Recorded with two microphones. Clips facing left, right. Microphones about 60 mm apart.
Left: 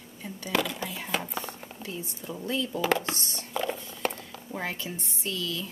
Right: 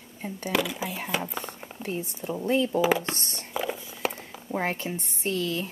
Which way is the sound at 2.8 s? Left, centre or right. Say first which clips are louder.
Right 3 dB; centre.